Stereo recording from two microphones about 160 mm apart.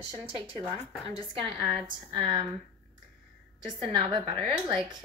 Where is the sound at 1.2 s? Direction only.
35° right (ahead or behind).